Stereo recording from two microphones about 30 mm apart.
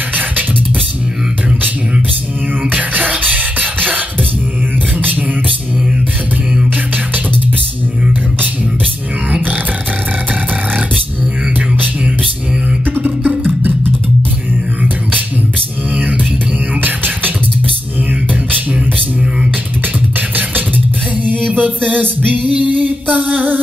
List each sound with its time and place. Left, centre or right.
2.7 s music: right
3.2 s beatboxing: right
13.4 s music: right
16.8 s music: right
21.5 s music: right